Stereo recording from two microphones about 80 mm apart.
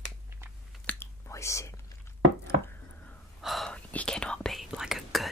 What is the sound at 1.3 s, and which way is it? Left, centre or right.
Speech, left.